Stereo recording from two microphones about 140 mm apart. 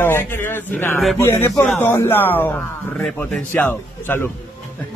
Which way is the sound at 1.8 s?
15° left (ahead or behind).